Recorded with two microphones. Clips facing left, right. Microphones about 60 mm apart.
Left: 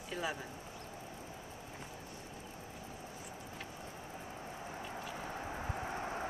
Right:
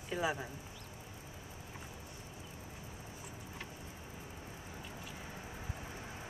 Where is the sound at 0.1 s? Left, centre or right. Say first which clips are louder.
Right 4 dB; centre.